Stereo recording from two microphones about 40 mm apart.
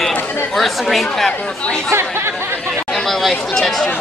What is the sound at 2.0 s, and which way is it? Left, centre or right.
Chatter, right.